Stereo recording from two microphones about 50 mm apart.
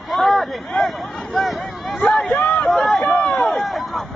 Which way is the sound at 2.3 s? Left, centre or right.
Left.